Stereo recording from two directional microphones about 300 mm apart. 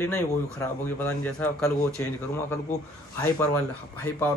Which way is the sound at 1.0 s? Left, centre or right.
Centre.